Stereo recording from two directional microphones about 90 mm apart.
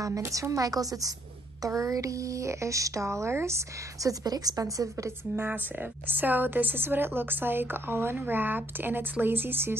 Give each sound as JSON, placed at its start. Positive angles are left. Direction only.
{"t": 0.0, "sound": "speech", "side_deg": -40}
{"t": 5.3, "sound": "a woman's voice", "side_deg": -20}